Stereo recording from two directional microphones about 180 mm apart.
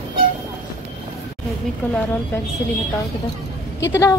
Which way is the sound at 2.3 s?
15° left (ahead or behind).